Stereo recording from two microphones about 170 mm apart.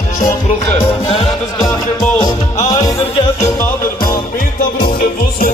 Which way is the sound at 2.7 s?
20° left (ahead or behind).